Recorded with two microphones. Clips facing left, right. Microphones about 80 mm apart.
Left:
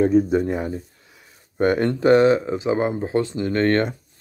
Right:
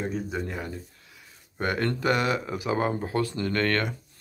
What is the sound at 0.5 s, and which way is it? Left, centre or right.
Speech, left.